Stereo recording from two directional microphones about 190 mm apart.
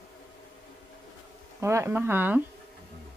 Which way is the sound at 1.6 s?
15° right (ahead or behind).